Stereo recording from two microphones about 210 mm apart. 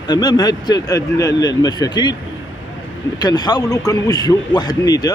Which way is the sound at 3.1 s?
20° left (ahead or behind).